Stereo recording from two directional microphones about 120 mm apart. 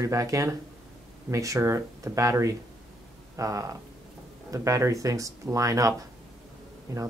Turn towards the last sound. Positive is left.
turn(degrees=-30)  # may be behind; listen again after turning